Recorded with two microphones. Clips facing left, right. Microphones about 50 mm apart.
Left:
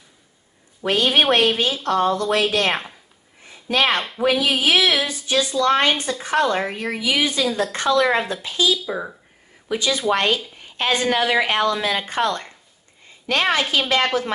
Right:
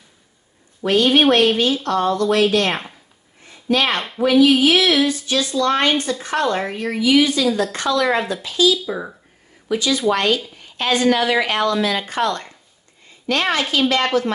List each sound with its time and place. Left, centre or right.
0.8 s a woman's voice: left
1.1 s speech: centre
3.4 s a sound: centre
4.2 s speech: centre
7.1 s a woman's voice: left
8.8 s speech: centre
9.7 s a woman's voice: left